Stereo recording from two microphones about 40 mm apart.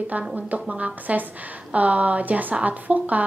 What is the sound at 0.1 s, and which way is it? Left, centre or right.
A woman's voice, right.